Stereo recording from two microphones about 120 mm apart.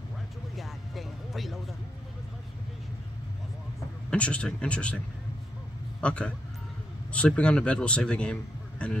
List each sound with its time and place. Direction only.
0.6 s music: centre (ahead or behind)
4.1 s a man's voice: 10° left (ahead or behind)